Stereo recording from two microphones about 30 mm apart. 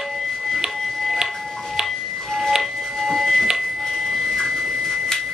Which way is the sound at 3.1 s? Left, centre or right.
Centre.